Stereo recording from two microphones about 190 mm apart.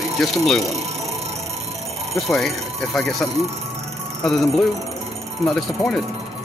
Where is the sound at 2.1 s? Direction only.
Centre (ahead or behind).